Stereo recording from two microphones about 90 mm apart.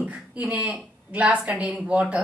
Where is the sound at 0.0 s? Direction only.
15° right (ahead or behind).